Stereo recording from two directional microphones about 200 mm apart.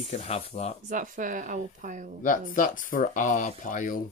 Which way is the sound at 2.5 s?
40° left (ahead or behind).